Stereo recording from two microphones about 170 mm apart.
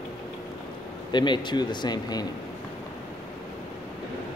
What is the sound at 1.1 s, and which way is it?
Speech, 25° left (ahead or behind).